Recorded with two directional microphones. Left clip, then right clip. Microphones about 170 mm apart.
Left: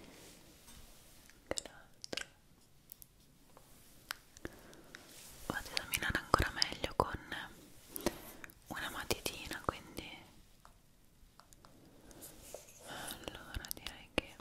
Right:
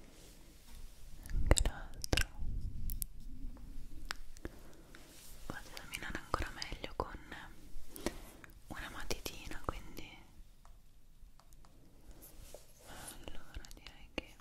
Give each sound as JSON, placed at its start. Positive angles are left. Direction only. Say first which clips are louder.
{"t": 1.5, "sound": "whispering", "louder": "right 7 dB", "side_deg": -40}
{"t": 4.4, "sound": "a sound", "louder": "left 2 dB", "side_deg": -10}
{"t": 5.5, "sound": "whispering", "louder": "left 8 dB", "side_deg": 10}
{"t": 12.8, "sound": "whispering", "louder": "left 7 dB", "side_deg": 5}